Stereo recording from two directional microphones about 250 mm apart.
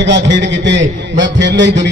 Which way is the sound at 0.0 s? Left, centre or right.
Right.